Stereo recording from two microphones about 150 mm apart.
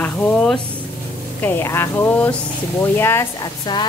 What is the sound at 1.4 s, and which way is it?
Speech, 15° left (ahead or behind).